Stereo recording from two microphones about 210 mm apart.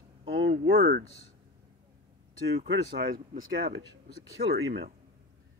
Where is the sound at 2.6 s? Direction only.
55° right (ahead or behind).